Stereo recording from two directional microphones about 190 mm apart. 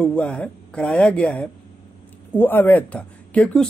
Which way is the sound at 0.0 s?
5° left (ahead or behind).